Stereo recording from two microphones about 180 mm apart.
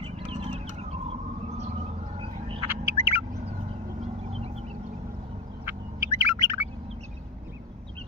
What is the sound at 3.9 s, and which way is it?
Vehicle, 35° right (ahead or behind).